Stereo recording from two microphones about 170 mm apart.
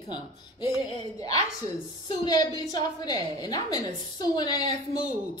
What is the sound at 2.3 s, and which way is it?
A woman's voice, 25° left (ahead or behind).